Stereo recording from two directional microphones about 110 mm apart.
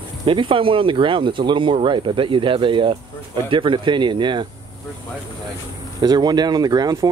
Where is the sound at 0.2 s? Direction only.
55° right (ahead or behind).